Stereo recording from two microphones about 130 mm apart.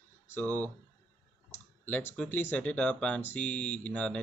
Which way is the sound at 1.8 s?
10° left (ahead or behind).